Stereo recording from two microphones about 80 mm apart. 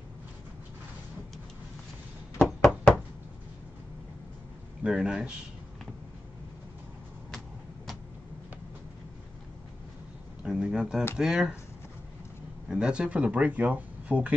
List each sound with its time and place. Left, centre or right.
2.3 s knock: centre
4.8 s speech: centre
7.3 s a sound: centre
10.4 s speech: centre
12.6 s speech: centre